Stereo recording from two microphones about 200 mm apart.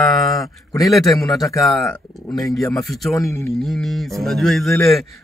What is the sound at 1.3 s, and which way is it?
Speech, 15° left (ahead or behind).